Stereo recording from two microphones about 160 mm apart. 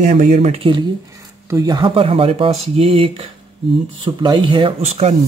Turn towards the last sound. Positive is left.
turn(degrees=-45)  # may be behind; listen again after turning